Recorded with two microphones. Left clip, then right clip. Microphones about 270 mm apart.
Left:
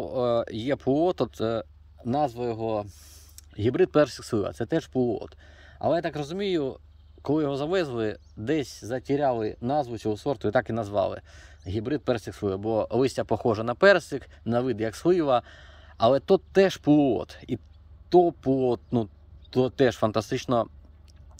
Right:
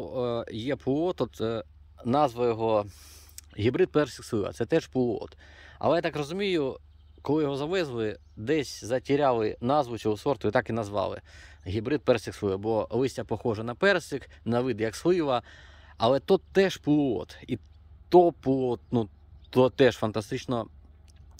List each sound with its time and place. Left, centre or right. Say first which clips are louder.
0.0 s speech: left 5 dB; centre